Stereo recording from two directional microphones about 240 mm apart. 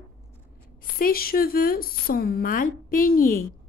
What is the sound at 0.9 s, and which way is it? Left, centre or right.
A woman's voice, left.